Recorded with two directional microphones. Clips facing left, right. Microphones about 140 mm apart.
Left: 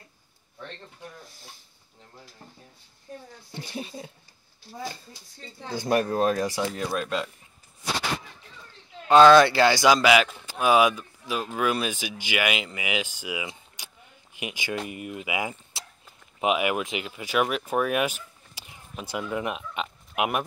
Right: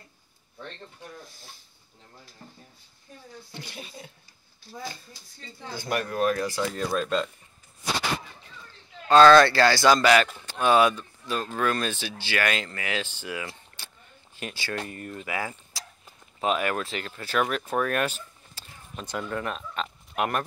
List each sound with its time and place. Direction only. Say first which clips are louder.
3.7 s speech: left 11 dB; 30° left (ahead or behind)
5.9 s speech: left 3 dB; 30° left (ahead or behind)
6.7 s speech: right 2 dB; 5° left (ahead or behind)
9.0 s speech: left 1 dB; 15° left (ahead or behind)
15.7 s a sound: even; 25° left (ahead or behind)
16.3 s speech: left 2 dB; 10° left (ahead or behind)